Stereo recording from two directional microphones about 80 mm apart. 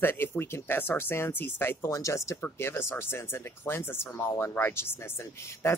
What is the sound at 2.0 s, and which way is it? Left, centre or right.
Speech, left.